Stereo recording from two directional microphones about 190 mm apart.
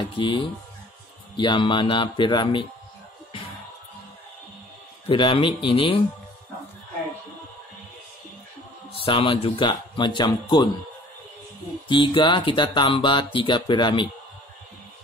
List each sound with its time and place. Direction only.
0.0 s speech: 25° left (ahead or behind)
5.0 s speech: 25° left (ahead or behind)
8.9 s speech: 25° left (ahead or behind)
11.9 s speech: 25° left (ahead or behind)